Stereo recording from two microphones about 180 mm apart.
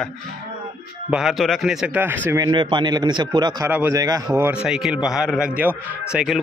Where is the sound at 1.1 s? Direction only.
Centre (ahead or behind).